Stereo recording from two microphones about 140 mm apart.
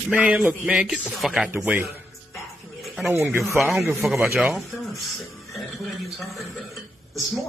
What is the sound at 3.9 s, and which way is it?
Speech, centre (ahead or behind).